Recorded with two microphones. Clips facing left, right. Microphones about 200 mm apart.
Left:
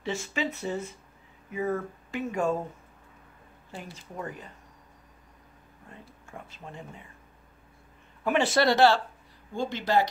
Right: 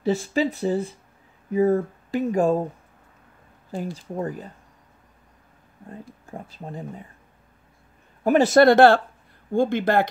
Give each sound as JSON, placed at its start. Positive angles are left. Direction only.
{"t": 0.0, "sound": "speech", "side_deg": -35}
{"t": 3.7, "sound": "speech", "side_deg": -35}
{"t": 5.9, "sound": "speech", "side_deg": -35}
{"t": 8.2, "sound": "speech", "side_deg": -40}